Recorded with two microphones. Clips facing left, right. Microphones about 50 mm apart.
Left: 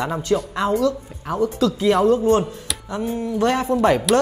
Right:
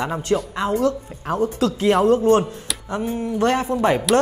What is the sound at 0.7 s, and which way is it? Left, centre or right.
Speech, right.